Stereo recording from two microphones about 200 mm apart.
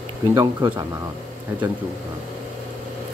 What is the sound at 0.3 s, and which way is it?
Speech, 15° right (ahead or behind).